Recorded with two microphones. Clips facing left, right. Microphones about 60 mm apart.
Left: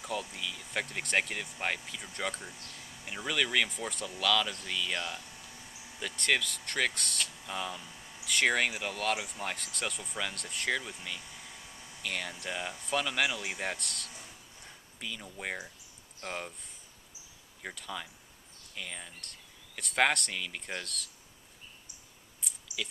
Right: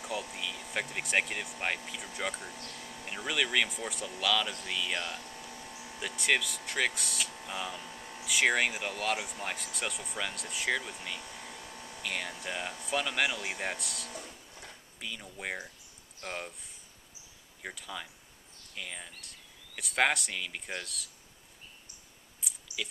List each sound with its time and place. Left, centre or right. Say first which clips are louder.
0.0 s speech: even; centre
2.5 s speech: right 4 dB; right
3.1 s speech: even; centre
5.5 s a sound: right 5 dB; right
5.9 s speech: right 1 dB; centre
7.8 s a sound: right 5 dB; right
8.3 s speech: right 1 dB; centre
11.1 s speech: right 3 dB; right
11.5 s a sound: right 4 dB; right
12.0 s speech: even; centre
14.1 s printer: right 5 dB; right
15.0 s speech: left 1 dB; centre
17.6 s speech: left 1 dB; centre
22.4 s a sound: right 1 dB; centre